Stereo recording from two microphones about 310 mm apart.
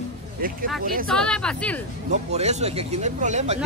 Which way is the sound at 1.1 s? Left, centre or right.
Centre.